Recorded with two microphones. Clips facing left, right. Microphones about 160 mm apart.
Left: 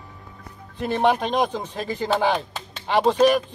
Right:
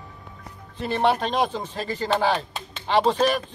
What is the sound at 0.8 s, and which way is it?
A man's voice, 15° left (ahead or behind).